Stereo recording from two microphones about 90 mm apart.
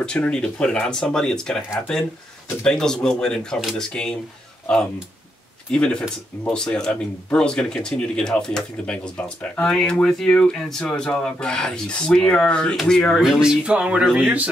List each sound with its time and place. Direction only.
0.0 s speech: 10° left (ahead or behind)
2.6 s speech: 5° left (ahead or behind)
5.7 s speech: 10° left (ahead or behind)
13.2 s speech: 5° right (ahead or behind)